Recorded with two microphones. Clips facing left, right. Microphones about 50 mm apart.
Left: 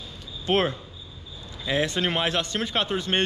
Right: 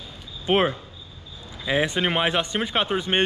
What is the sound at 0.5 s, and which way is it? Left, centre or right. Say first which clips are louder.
A man's voice: right 2 dB; centre.